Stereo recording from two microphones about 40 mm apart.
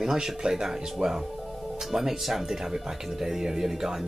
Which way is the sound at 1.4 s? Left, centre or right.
Centre.